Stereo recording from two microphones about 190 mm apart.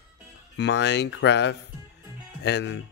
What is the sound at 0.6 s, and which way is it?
Speech, 65° left (ahead or behind).